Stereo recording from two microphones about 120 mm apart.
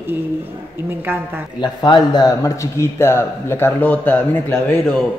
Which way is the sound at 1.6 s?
40° left (ahead or behind).